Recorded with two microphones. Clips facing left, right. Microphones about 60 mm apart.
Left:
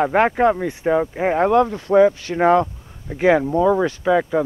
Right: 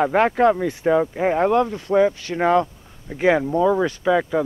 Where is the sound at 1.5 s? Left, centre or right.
Left.